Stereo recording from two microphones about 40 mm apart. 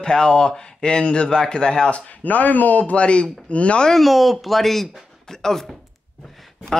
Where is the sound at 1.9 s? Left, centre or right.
Left.